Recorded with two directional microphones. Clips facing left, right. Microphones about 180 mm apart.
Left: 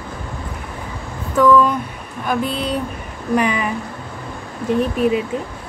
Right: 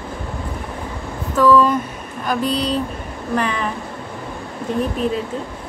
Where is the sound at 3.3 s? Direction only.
10° left (ahead or behind).